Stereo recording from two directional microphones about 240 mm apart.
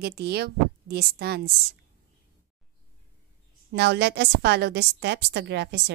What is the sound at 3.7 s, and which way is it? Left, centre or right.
A woman's voice, right.